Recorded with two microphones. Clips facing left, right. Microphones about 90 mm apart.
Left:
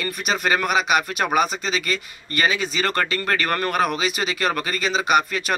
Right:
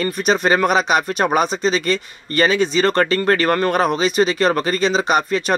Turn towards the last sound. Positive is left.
turn(degrees=-35)  # may be behind; listen again after turning